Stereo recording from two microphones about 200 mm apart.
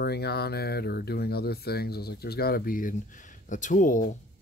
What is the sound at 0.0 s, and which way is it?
Speech, 55° left (ahead or behind).